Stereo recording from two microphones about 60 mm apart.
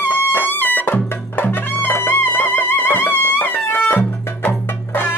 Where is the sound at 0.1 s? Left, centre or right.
Left.